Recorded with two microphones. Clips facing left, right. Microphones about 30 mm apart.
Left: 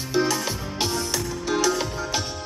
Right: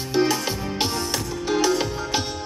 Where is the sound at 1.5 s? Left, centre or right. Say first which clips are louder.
Right 2 dB; centre.